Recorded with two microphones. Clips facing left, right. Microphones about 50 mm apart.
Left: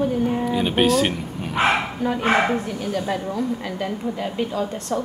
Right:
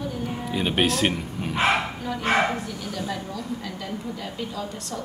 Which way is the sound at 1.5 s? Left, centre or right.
Centre.